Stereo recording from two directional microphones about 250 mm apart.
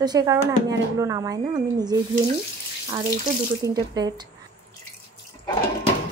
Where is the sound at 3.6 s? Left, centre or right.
Centre.